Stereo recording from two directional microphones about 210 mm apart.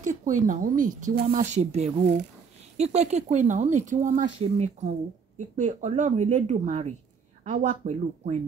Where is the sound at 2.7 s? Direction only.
30° right (ahead or behind).